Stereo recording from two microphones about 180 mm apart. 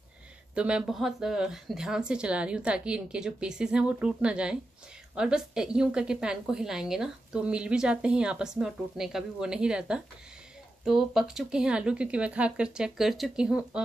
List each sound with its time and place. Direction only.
0.6 s a woman's voice: 5° right (ahead or behind)